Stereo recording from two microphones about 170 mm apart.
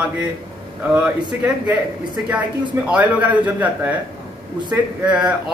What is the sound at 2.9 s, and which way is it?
A man's voice, 10° right (ahead or behind).